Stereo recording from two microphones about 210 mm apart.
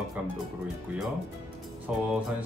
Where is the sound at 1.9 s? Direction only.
5° right (ahead or behind).